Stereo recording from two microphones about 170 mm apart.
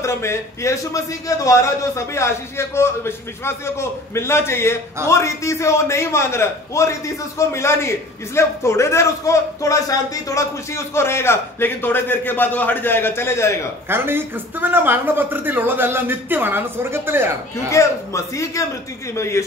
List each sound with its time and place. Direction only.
0.0 s a man's voice: 15° left (ahead or behind)
13.8 s speech: 15° right (ahead or behind)
17.6 s a man's voice: 15° left (ahead or behind)